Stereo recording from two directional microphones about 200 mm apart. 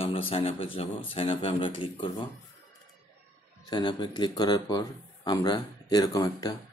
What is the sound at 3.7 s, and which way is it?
Speech, 20° left (ahead or behind).